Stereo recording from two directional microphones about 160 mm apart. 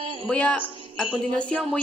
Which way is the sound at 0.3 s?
5° left (ahead or behind).